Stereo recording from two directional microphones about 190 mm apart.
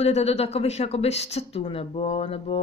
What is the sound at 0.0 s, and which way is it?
Speech, 35° left (ahead or behind).